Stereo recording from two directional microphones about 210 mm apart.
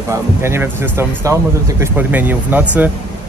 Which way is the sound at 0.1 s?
10° right (ahead or behind).